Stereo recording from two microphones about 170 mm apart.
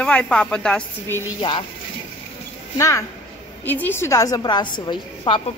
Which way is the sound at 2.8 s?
15° left (ahead or behind).